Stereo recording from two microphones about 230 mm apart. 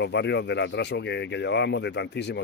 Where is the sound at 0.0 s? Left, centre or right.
Left.